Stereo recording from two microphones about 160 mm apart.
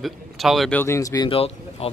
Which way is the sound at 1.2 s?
35° left (ahead or behind).